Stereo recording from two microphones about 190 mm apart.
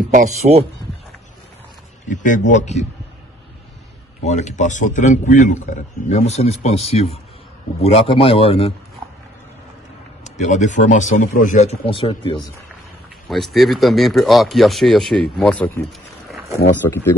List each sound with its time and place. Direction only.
0.1 s speech: 40° right (ahead or behind)
2.0 s a man's voice: 40° left (ahead or behind)
4.2 s a man's voice: 35° left (ahead or behind)
10.2 s a man's voice: 40° left (ahead or behind)
11.8 s a man's voice: 30° left (ahead or behind)
13.3 s speech: centre (ahead or behind)